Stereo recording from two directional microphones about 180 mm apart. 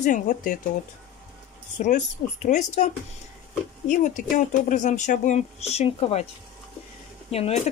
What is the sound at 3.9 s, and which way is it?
Speech, 45° left (ahead or behind).